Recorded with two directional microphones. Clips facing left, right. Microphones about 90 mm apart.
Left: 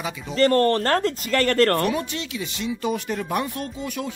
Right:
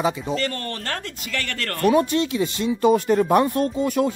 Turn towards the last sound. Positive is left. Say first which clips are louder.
# right 9 dB
turn(degrees=-40)  # may be behind; listen again after turning